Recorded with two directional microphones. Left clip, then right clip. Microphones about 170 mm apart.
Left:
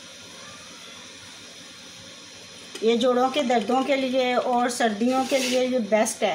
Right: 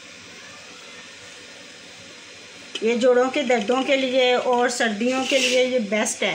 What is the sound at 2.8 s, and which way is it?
Speech, 40° right (ahead or behind).